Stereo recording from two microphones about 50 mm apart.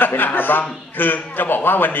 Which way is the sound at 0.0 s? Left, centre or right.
Left.